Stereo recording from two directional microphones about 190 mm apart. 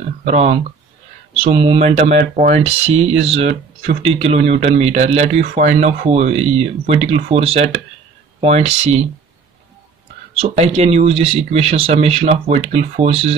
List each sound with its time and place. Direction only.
0.2 s speech: 35° right (ahead or behind)
10.3 s speech: 30° right (ahead or behind)